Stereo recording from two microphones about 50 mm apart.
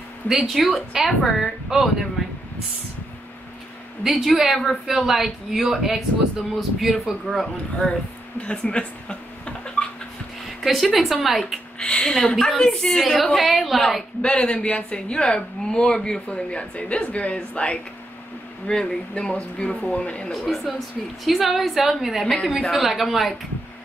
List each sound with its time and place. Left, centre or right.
0.3 s speech: centre
4.0 s speech: centre
8.4 s speech: left
9.8 s a sound: left
10.6 s speech: centre
11.8 s a woman's voice: centre
14.2 s speech: centre
20.4 s speech: centre
22.2 s a woman's voice: centre
22.7 s speech: centre